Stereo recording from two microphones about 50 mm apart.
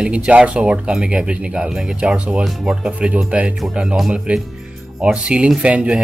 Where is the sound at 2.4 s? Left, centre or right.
Centre.